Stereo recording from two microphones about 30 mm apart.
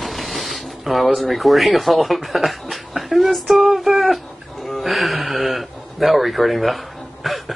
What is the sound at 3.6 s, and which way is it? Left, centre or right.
Music, centre.